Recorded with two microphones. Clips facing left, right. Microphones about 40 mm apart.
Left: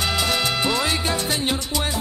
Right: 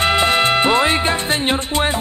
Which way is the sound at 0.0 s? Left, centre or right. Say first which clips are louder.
Right 7 dB; right.